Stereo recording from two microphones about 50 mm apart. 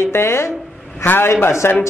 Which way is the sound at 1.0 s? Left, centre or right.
Left.